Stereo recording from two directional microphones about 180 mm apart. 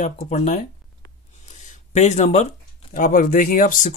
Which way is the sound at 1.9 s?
40° left (ahead or behind).